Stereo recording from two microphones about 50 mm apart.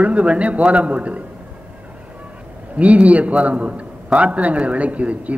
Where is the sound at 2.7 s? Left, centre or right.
Right.